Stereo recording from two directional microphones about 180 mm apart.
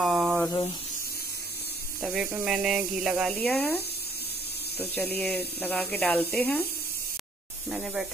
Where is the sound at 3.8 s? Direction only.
65° left (ahead or behind).